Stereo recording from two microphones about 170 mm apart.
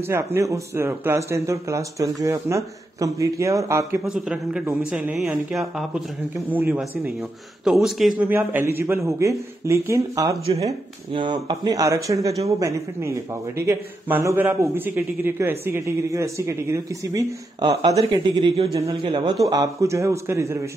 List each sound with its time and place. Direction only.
0.0 s speech: 15° right (ahead or behind)
4.0 s a man's voice: 5° right (ahead or behind)
8.2 s speech: 10° right (ahead or behind)
10.4 s speech: 35° right (ahead or behind); by 20.5 s 15° right (ahead or behind)